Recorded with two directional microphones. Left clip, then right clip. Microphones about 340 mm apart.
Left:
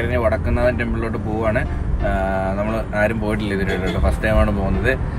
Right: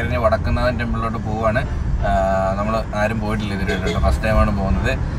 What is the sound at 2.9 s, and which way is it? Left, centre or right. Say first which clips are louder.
Speech: left 2 dB; right.